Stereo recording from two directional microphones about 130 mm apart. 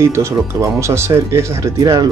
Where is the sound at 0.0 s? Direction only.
20° right (ahead or behind).